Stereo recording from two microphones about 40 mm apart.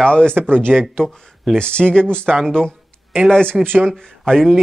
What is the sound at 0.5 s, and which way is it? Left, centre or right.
Speech, right.